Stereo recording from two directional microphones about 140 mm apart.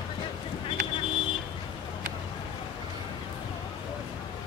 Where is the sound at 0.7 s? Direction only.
40° left (ahead or behind).